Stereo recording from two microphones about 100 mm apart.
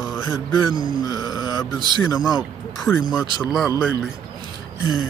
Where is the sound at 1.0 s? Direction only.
35° left (ahead or behind).